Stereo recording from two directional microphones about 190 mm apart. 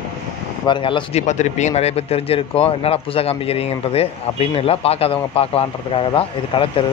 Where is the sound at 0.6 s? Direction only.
25° left (ahead or behind).